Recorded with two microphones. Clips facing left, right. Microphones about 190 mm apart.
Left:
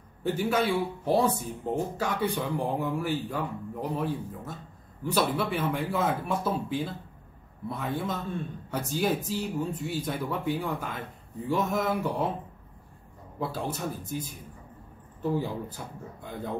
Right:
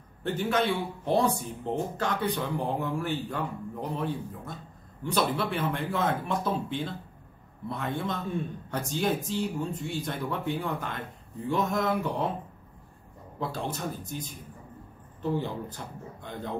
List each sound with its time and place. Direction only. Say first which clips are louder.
0.2 s speech: left 1 dB; 10° left (ahead or behind)
13.4 s speech: left 1 dB; 5° left (ahead or behind)
15.3 s speech: left 1 dB; 5° left (ahead or behind)